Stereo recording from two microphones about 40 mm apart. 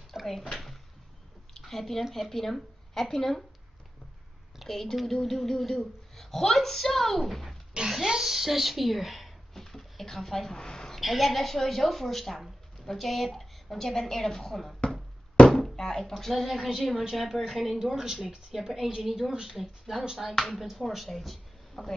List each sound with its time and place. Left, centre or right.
0.1 s a sound: centre
1.7 s a woman's voice: centre
4.6 s a woman's voice: centre
7.9 s a sound: centre
11.0 s a woman's voice: centre
15.4 s a sound: left
15.7 s speech: centre
16.2 s speech: centre
17.7 s speech: centre
20.3 s a woman's voice: centre